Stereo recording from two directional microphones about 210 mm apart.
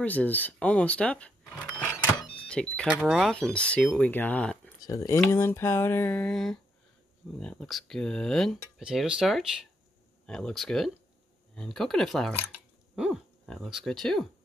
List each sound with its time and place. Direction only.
0.0 s speech: 5° left (ahead or behind)